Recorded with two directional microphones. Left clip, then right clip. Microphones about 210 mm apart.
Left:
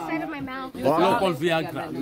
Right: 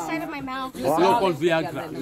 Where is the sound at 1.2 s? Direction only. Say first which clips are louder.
Right 2 dB; 5° left (ahead or behind).